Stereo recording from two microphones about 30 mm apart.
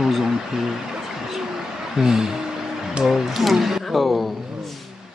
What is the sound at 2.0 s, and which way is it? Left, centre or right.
Speech, right.